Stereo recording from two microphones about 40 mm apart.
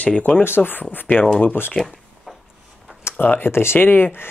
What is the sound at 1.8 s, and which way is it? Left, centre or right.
Speech, centre.